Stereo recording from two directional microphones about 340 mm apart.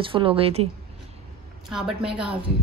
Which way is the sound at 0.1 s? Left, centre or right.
Centre.